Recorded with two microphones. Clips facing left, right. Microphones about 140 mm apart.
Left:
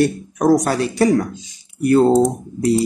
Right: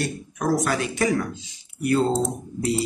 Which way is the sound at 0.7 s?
35° left (ahead or behind).